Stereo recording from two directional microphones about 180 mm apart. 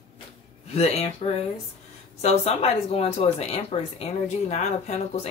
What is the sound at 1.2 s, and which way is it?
Speech, 35° left (ahead or behind).